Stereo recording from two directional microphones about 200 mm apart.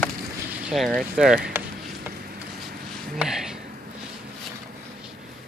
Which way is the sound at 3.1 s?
Centre (ahead or behind).